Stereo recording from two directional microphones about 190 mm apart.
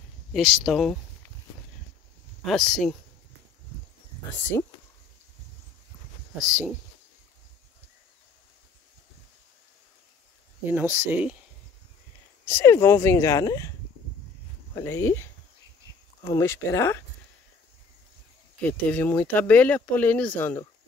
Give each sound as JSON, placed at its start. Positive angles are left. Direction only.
{"t": 0.3, "sound": "speech", "side_deg": 0}
{"t": 2.4, "sound": "speech", "side_deg": 0}
{"t": 4.5, "sound": "speech", "side_deg": 15}
{"t": 10.6, "sound": "speech", "side_deg": -10}
{"t": 12.4, "sound": "speech", "side_deg": 15}
{"t": 14.8, "sound": "speech", "side_deg": 15}
{"t": 18.6, "sound": "speech", "side_deg": 10}